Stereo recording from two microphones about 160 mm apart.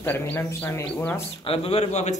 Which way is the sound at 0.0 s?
15° left (ahead or behind).